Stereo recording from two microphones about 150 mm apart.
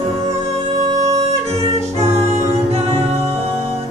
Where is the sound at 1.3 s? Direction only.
45° right (ahead or behind).